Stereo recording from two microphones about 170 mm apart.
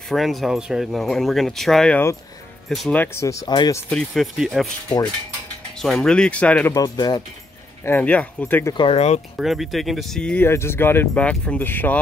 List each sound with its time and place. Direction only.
0.1 s speech: centre (ahead or behind)
3.0 s speech: 15° left (ahead or behind)
3.9 s speech: centre (ahead or behind)
4.8 s speech: 20° left (ahead or behind)
5.8 s speech: centre (ahead or behind)
6.7 s speech: 20° left (ahead or behind)
7.8 s speech: 10° left (ahead or behind)
8.7 s speech: 35° left (ahead or behind)
9.4 s speech: centre (ahead or behind)